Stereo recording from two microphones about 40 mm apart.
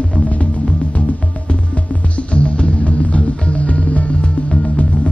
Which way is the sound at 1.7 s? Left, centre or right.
Left.